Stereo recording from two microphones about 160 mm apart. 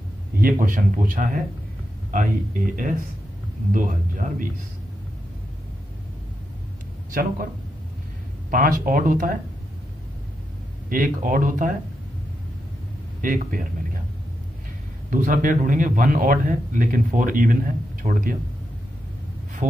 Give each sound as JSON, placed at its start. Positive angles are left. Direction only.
{"t": 0.4, "sound": "a man's voice", "side_deg": -60}
{"t": 2.7, "sound": "a man's voice", "side_deg": -55}
{"t": 7.1, "sound": "speech", "side_deg": -60}
{"t": 8.5, "sound": "a man's voice", "side_deg": -60}
{"t": 10.9, "sound": "a man's voice", "side_deg": -60}
{"t": 13.2, "sound": "speech", "side_deg": -55}
{"t": 15.0, "sound": "a man's voice", "side_deg": -55}
{"t": 19.6, "sound": "heart sounds", "side_deg": -50}